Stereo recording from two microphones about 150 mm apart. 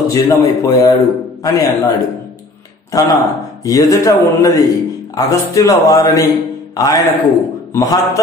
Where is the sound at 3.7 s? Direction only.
20° left (ahead or behind).